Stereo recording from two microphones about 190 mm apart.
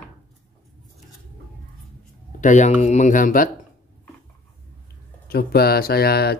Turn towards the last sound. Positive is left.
turn(degrees=55)  # may be behind; listen again after turning